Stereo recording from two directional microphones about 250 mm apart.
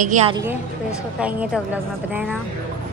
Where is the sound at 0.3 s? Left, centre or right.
Centre.